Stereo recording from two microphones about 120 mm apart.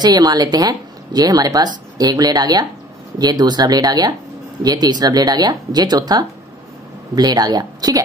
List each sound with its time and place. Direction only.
0.0 s a woman's voice: 35° right (ahead or behind)